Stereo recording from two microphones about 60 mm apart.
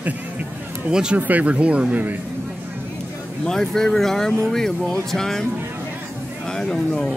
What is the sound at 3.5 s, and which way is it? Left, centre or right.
Speech, centre.